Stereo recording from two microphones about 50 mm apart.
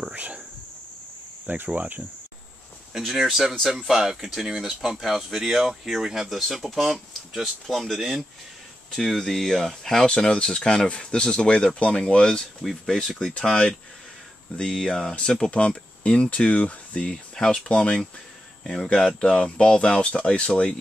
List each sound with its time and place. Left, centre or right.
0.1 s cricket: right
1.7 s speech: right
3.1 s speech: centre
13.3 s speech: left
16.0 s speech: left